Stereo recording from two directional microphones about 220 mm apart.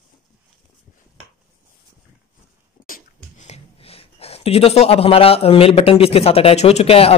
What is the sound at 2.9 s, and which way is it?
Speech, 35° left (ahead or behind).